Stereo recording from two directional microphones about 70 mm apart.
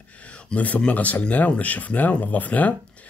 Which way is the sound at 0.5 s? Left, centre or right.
Left.